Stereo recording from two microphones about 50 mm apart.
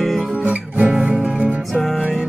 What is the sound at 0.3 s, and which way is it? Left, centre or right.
Music, right.